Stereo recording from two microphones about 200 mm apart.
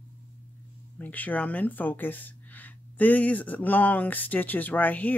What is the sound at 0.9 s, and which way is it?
Speech, 10° left (ahead or behind).